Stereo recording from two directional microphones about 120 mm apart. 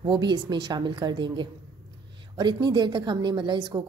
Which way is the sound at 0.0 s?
40° right (ahead or behind).